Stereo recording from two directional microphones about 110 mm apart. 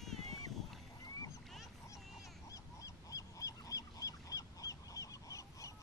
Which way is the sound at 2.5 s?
30° left (ahead or behind).